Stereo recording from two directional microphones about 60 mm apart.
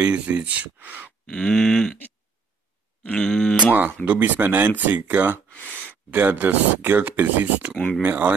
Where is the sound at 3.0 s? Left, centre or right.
Centre.